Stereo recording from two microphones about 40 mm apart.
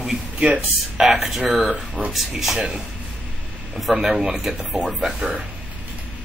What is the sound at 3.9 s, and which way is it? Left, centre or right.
Speech, centre.